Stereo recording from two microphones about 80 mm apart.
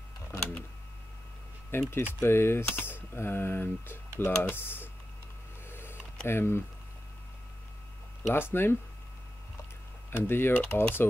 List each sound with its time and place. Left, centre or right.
1.7 s speech: left
5.7 s a sound: left
6.2 s speech: left
8.3 s speech: left
10.1 s speech: left